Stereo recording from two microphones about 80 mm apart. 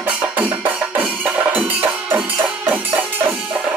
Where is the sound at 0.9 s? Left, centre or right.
Right.